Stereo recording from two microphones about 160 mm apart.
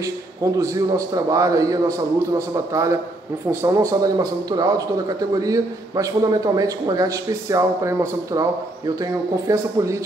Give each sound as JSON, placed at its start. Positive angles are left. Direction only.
{"t": 0.0, "sound": "speech", "side_deg": -20}